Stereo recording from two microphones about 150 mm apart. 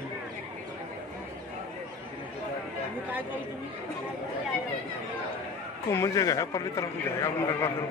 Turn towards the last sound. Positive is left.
turn(degrees=15)  # may be behind; listen again after turning